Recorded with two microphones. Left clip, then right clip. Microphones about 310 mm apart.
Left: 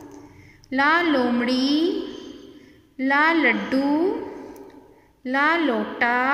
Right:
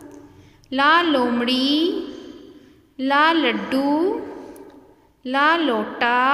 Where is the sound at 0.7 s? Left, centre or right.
Centre.